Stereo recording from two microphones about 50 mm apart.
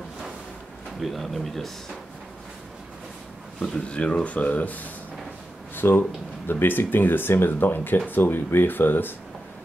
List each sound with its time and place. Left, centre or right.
1.0 s speech: centre
3.9 s speech: left
5.8 s speech: left